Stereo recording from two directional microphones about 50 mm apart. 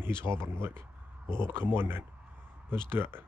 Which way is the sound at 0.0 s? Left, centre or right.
Right.